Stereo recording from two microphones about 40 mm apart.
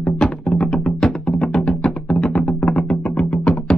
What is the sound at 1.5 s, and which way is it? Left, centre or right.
Music, centre.